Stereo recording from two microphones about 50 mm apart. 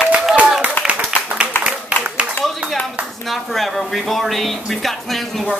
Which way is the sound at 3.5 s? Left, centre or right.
Centre.